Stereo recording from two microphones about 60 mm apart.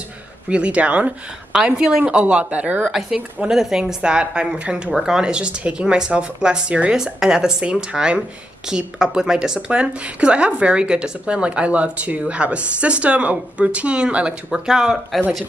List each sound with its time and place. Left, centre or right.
0.5 s speech: right
1.5 s speech: centre
2.9 s speech: centre